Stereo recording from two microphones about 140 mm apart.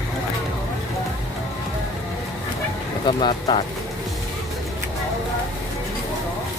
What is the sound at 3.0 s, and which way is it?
Speech, 30° left (ahead or behind).